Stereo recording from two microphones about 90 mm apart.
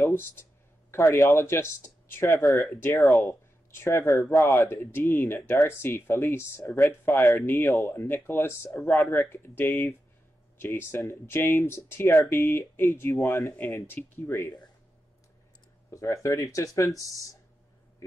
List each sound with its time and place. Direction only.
0.0 s speech: 25° left (ahead or behind)
13.9 s speech: 25° left (ahead or behind)
15.9 s speech: 35° left (ahead or behind)